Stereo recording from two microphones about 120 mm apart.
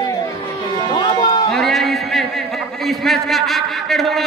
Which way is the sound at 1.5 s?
Centre (ahead or behind).